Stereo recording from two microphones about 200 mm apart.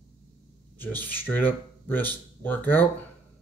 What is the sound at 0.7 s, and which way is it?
Speech, 10° left (ahead or behind).